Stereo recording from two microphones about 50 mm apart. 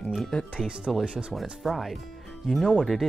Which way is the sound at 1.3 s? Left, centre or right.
Centre.